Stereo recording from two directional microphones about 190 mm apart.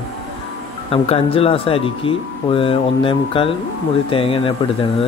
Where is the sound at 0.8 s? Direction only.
30° left (ahead or behind).